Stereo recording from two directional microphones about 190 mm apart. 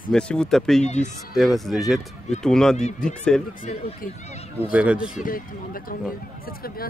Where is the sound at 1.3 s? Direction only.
Centre (ahead or behind).